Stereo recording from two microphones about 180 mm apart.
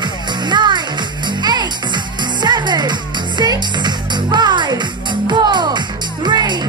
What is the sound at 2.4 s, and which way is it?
Music, 25° right (ahead or behind).